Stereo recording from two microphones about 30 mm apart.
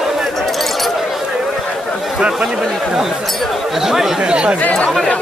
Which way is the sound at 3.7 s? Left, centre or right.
Centre.